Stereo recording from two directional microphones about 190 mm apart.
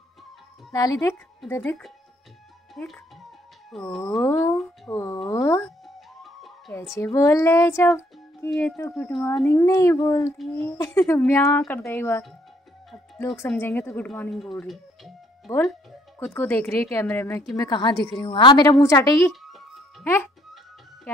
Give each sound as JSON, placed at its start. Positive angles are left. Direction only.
{"t": 0.7, "sound": "speech", "side_deg": 15}
{"t": 2.7, "sound": "speech", "side_deg": 0}
{"t": 4.2, "sound": "speech", "side_deg": 15}
{"t": 5.9, "sound": "music", "side_deg": 0}
{"t": 6.9, "sound": "speech", "side_deg": 15}
{"t": 13.5, "sound": "speech", "side_deg": 10}
{"t": 17.6, "sound": "a woman's voice", "side_deg": 20}